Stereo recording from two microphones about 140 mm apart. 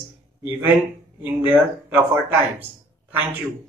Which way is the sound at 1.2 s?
15° right (ahead or behind).